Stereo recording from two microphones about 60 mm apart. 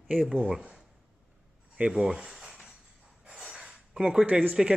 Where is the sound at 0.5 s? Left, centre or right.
Centre.